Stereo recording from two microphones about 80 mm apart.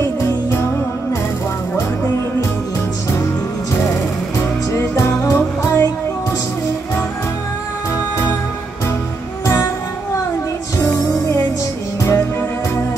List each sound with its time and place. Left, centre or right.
0.0 s music: left
3.9 s music: left
10.8 s music: left